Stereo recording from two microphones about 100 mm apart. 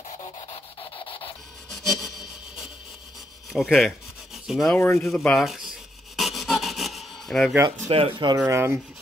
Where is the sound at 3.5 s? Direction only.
Centre (ahead or behind).